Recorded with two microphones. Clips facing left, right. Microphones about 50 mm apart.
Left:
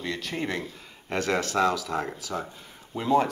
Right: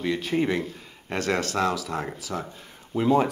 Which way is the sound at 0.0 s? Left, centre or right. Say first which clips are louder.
Right 6 dB; centre.